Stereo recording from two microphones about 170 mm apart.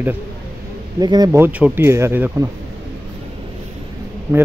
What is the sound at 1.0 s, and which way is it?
Speech, 25° right (ahead or behind).